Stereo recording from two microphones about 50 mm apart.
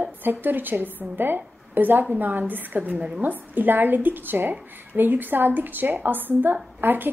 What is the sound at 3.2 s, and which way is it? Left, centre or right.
A woman's voice, right.